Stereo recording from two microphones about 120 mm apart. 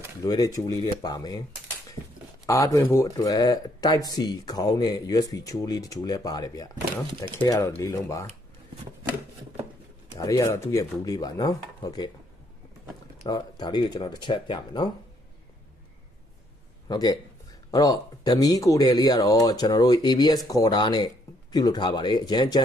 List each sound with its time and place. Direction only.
0.2 s speech: 30° left (ahead or behind)
2.4 s speech: 25° left (ahead or behind)
10.1 s speech: 30° left (ahead or behind)
13.3 s speech: 35° left (ahead or behind)
16.8 s speech: 35° left (ahead or behind)